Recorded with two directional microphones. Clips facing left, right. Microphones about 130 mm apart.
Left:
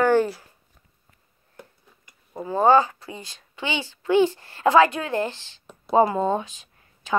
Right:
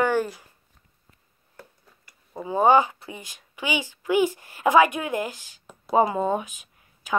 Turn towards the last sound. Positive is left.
turn(degrees=-15)  # may be behind; listen again after turning